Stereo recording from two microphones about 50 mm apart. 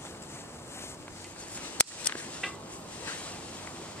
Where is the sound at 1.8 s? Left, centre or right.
Left.